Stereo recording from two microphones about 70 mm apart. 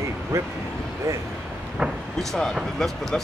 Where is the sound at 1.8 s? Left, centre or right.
Centre.